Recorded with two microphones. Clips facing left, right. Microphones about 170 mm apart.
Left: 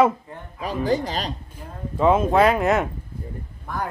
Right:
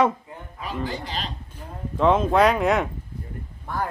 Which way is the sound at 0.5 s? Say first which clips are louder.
Left 7 dB; 45° left (ahead or behind).